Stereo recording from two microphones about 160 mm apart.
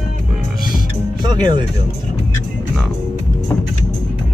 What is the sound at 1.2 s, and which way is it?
Music, 25° right (ahead or behind).